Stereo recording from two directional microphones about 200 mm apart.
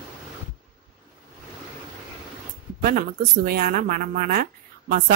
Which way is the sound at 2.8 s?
50° right (ahead or behind).